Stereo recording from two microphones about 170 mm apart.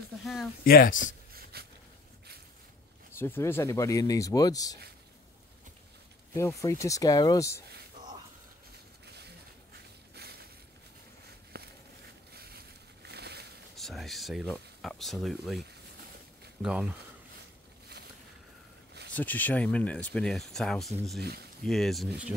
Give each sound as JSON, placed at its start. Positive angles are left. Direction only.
{"t": 0.2, "sound": "speech", "side_deg": 0}
{"t": 0.7, "sound": "speech", "side_deg": 60}
{"t": 0.9, "sound": "a sound", "side_deg": -60}
{"t": 3.2, "sound": "speech", "side_deg": 15}
{"t": 6.3, "sound": "speech", "side_deg": 20}
{"t": 9.0, "sound": "a sound", "side_deg": -75}
{"t": 11.5, "sound": "a sound", "side_deg": -65}
{"t": 13.7, "sound": "speech", "side_deg": 0}
{"t": 16.6, "sound": "speech", "side_deg": -5}
{"t": 19.1, "sound": "speech", "side_deg": 10}
{"t": 21.2, "sound": "speech", "side_deg": -70}
{"t": 21.6, "sound": "speech", "side_deg": 0}